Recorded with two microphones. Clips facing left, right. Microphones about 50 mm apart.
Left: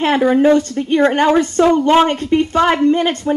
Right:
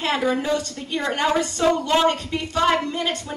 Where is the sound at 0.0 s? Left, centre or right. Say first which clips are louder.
Left 10 dB; left.